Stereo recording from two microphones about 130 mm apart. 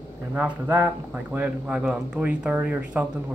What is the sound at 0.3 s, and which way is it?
A man's voice, 15° right (ahead or behind).